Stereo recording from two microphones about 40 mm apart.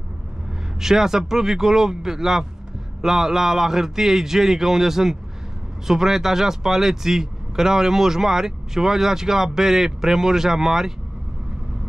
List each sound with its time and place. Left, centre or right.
0.7 s speech: centre